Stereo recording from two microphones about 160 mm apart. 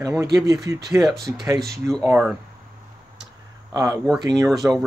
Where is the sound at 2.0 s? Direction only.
10° right (ahead or behind).